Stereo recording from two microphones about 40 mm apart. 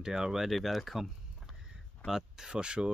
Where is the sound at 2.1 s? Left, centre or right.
Centre.